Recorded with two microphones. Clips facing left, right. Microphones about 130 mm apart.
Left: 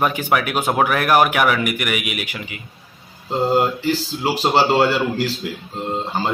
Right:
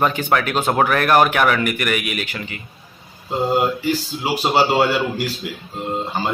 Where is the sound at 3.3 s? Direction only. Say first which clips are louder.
Left 1 dB; 15° right (ahead or behind).